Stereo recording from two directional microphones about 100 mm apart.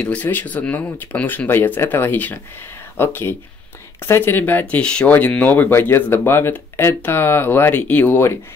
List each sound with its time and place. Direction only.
0.0 s speech: 15° left (ahead or behind)